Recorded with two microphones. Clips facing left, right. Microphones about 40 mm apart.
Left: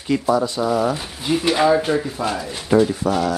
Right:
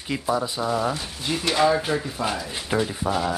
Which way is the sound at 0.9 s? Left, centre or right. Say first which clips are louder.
Left 6 dB; centre.